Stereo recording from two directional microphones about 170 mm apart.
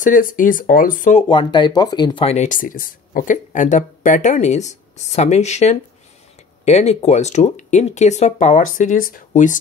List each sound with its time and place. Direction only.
0.0 s speech: 50° left (ahead or behind)
1.3 s speech: 25° left (ahead or behind); by 9.6 s 50° left (ahead or behind)